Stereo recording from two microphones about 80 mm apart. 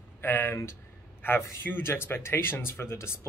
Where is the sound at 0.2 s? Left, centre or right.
Left.